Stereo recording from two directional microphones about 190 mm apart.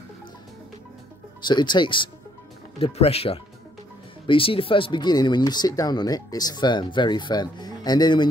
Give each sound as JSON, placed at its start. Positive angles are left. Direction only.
{"t": 1.4, "sound": "speech", "side_deg": 25}